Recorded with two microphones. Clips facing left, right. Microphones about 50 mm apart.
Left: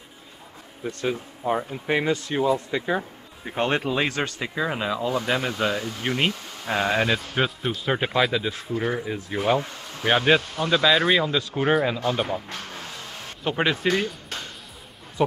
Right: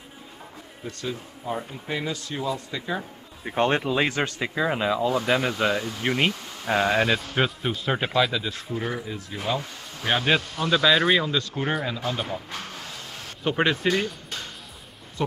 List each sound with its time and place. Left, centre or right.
0.8 s speech: left
3.4 s speech: centre
8.3 s speech: centre
8.7 s speech: centre
9.0 s speech: left
10.0 s speech: centre
13.4 s speech: centre
15.2 s speech: centre